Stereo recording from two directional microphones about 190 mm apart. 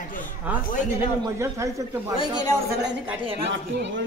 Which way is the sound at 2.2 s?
20° left (ahead or behind).